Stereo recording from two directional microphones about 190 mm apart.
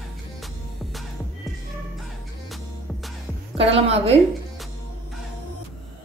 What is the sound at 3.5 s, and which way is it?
Speech, 30° right (ahead or behind).